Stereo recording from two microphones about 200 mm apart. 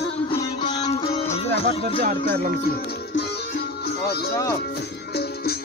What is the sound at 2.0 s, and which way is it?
Music, 45° right (ahead or behind).